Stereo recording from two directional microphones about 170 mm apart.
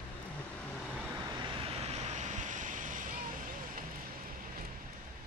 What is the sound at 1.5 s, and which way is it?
Vehicle, 35° right (ahead or behind).